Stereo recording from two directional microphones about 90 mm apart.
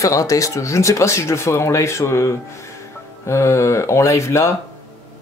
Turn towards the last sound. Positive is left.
turn(degrees=35)  # may be behind; listen again after turning